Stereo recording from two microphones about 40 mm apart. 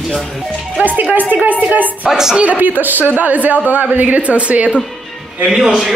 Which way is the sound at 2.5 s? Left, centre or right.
Right.